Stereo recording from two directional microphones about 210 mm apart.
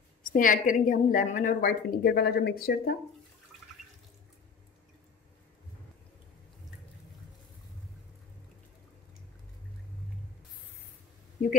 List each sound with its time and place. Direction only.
0.3 s a woman's voice: 40° left (ahead or behind)